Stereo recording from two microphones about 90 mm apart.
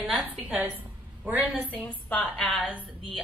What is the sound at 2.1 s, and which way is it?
Speech, 15° left (ahead or behind).